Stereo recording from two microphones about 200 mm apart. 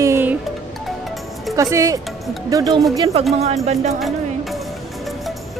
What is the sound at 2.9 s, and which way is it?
Speech, 30° right (ahead or behind).